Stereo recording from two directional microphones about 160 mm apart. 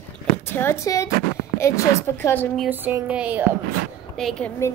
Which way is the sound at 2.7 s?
10° right (ahead or behind).